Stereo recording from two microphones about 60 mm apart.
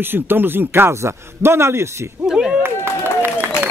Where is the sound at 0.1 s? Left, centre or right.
Right.